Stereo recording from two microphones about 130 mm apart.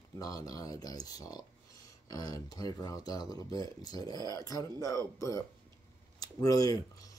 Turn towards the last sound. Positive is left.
turn(degrees=30)  # may be behind; listen again after turning